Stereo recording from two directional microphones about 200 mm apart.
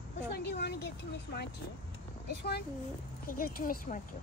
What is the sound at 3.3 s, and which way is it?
Speech, 45° left (ahead or behind).